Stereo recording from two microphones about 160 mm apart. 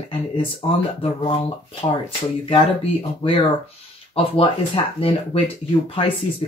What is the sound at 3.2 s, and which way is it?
Speech, 35° left (ahead or behind).